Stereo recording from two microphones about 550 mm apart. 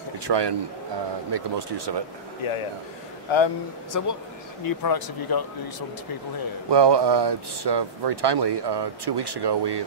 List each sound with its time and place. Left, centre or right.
0.2 s speech: right
2.4 s speech: left
3.9 s speech: left
6.7 s speech: right